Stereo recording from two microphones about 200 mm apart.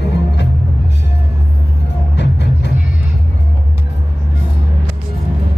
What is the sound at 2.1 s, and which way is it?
Music, 60° left (ahead or behind).